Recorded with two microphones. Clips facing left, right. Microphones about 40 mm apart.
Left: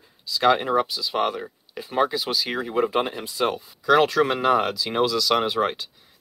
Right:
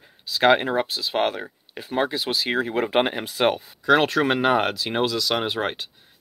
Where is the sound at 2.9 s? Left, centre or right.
Right.